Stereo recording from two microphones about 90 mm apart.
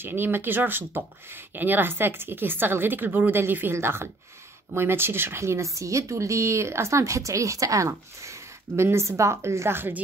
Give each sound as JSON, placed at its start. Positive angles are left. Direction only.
{"t": 0.0, "sound": "a woman's voice", "side_deg": -25}